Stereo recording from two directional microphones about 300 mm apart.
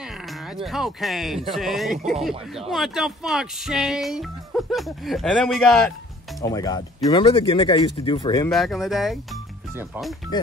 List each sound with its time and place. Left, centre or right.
0.7 s speech: centre
6.4 s speech: centre
8.5 s speech: centre